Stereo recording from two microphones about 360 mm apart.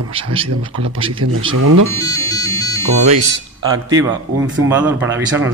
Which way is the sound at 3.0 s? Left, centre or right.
Centre.